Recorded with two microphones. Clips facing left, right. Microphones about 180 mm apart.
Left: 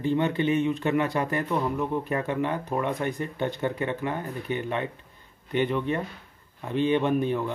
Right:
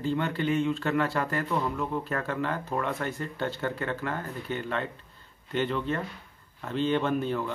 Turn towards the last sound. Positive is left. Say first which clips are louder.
# left 3 dB
turn(degrees=15)  # may be behind; listen again after turning